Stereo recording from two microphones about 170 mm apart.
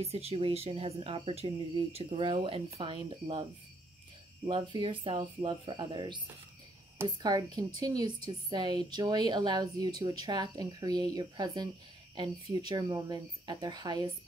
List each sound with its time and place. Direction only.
0.0 s speech: 35° right (ahead or behind)
4.5 s a woman's voice: 30° right (ahead or behind)